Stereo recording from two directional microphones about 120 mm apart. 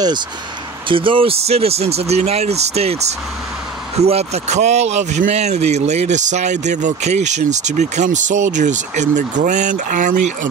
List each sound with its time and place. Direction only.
0.8 s speech: 45° right (ahead or behind); by 10.5 s 90° right